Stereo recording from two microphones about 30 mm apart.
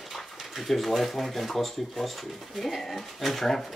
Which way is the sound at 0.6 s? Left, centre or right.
Centre.